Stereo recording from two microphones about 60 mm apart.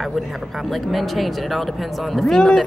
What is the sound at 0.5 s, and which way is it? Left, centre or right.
Speech, centre.